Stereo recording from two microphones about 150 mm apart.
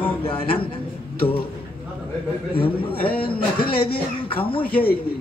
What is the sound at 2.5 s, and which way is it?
Speech, 35° left (ahead or behind).